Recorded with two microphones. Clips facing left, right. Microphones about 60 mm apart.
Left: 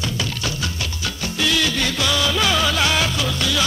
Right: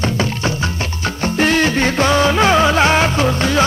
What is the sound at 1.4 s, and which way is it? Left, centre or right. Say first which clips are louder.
Music: right 6 dB; right.